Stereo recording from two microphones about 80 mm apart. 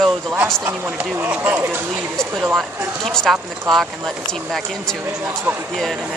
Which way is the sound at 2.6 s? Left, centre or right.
Centre.